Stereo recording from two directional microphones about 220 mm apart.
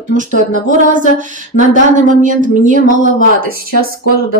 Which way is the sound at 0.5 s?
35° right (ahead or behind).